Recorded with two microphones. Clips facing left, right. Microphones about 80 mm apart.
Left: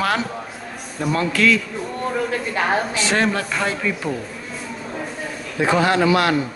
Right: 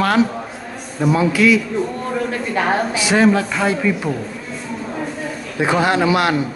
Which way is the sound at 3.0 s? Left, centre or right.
Centre.